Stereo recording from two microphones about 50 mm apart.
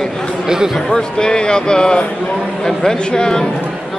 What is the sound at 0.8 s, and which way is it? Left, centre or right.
Speech, centre.